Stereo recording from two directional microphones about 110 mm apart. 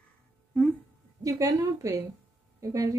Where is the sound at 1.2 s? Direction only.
30° right (ahead or behind).